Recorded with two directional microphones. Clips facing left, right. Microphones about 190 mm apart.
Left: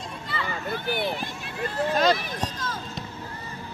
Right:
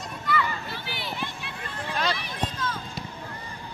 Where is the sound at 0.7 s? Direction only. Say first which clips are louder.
Left 8 dB; 50° left (ahead or behind).